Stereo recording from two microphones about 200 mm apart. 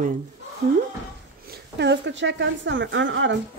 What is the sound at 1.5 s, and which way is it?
Speech, 60° right (ahead or behind).